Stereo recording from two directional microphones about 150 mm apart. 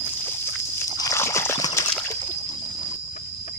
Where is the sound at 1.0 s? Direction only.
20° left (ahead or behind).